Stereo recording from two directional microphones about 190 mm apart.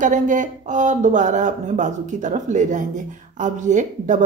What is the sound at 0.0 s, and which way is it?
Speech, 40° right (ahead or behind).